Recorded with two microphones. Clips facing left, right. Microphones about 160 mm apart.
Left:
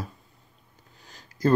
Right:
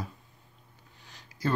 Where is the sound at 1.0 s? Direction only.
45° left (ahead or behind).